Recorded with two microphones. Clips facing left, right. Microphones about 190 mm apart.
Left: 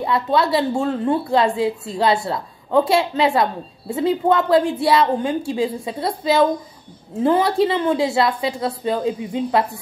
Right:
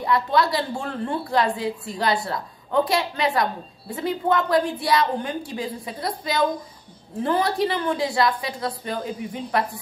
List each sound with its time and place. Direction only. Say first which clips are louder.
0.0 s a woman's voice: left 2 dB; 25° left (ahead or behind)